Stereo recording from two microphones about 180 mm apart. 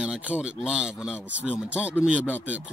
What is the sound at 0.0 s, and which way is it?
Speech, 5° right (ahead or behind).